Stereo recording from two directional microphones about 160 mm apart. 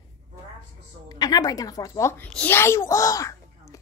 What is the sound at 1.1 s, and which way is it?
A woman's voice, 25° left (ahead or behind).